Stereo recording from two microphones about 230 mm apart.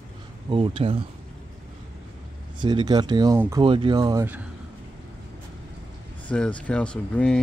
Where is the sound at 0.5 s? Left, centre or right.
Right.